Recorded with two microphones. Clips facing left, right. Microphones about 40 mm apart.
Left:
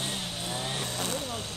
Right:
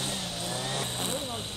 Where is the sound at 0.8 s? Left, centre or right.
Right.